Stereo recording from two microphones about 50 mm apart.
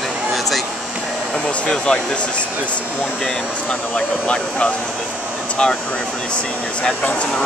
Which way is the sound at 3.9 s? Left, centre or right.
Left.